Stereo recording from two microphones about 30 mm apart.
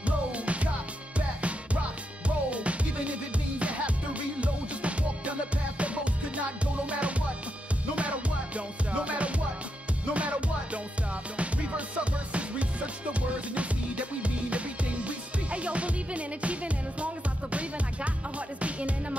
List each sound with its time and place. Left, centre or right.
0.0 s music: right